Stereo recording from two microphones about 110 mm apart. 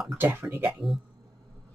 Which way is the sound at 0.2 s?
20° right (ahead or behind).